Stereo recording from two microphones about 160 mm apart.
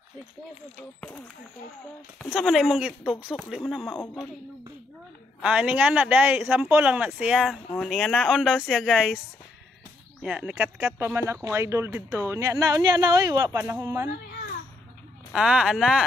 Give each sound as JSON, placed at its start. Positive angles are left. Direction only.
{"t": 2.1, "sound": "speech", "side_deg": 5}
{"t": 5.4, "sound": "a man's voice", "side_deg": -5}
{"t": 10.2, "sound": "a man's voice", "side_deg": -10}
{"t": 15.3, "sound": "speech", "side_deg": -5}